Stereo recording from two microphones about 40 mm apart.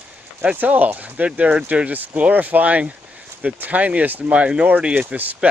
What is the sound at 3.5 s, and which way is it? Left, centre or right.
Speech, right.